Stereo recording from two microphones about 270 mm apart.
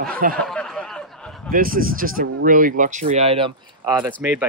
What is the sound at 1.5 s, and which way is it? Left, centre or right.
Speech, right.